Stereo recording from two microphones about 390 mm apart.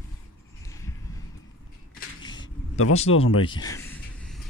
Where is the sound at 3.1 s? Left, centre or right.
Left.